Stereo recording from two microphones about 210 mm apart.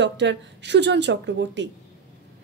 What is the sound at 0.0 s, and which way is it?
A woman's voice, 55° right (ahead or behind).